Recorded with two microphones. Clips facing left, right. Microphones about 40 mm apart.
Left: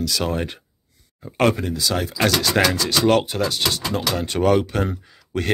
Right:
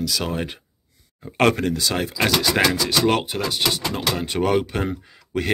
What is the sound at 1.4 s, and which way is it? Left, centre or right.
Speech, right.